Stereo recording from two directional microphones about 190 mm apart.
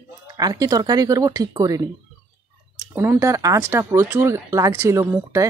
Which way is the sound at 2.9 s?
10° right (ahead or behind).